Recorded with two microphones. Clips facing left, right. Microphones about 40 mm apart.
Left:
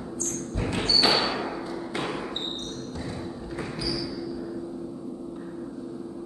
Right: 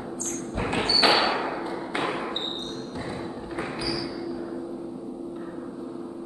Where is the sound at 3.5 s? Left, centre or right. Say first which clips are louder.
Right 1 dB; right.